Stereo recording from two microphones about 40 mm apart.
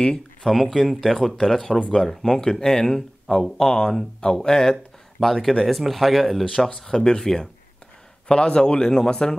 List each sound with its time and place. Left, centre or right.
0.0 s a sound: centre
0.5 s speech: centre
5.2 s speech: centre
6.7 s a man's voice: centre
8.3 s a man's voice: left